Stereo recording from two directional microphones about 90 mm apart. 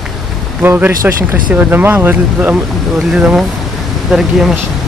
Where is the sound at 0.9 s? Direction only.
40° right (ahead or behind).